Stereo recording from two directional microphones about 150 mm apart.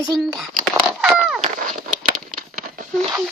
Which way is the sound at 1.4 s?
60° right (ahead or behind).